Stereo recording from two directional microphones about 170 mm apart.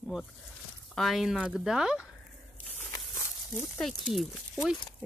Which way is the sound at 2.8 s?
15° left (ahead or behind).